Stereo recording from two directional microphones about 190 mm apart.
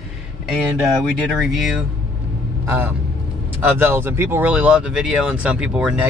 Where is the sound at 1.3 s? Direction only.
Centre (ahead or behind).